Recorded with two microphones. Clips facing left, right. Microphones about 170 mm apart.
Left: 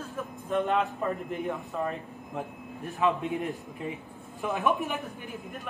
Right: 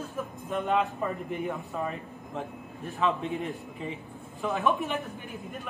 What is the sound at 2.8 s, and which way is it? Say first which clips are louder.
Speech: left 1 dB; 15° left (ahead or behind).